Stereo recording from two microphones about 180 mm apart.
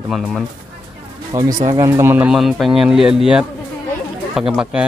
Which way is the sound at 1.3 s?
20° right (ahead or behind).